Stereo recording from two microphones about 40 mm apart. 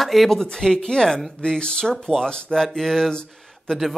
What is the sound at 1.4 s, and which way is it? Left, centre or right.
Speech, left.